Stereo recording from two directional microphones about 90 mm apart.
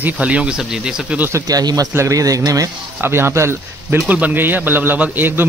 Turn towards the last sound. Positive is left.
turn(degrees=-20)  # may be behind; listen again after turning